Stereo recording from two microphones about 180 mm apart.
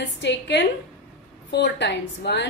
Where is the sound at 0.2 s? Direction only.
75° left (ahead or behind).